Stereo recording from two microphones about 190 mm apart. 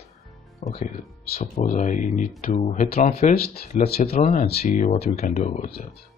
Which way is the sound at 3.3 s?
55° left (ahead or behind).